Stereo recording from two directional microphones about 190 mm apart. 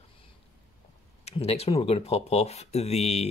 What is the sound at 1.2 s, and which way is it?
Speech, 30° left (ahead or behind).